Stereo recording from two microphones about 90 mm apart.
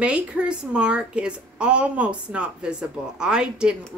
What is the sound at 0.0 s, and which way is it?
A woman's voice, 10° right (ahead or behind).